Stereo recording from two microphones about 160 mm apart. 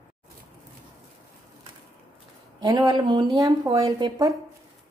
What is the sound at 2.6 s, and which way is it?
A woman's voice, 25° right (ahead or behind).